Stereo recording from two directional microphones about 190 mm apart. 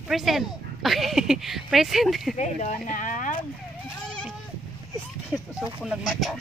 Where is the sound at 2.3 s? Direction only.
40° left (ahead or behind).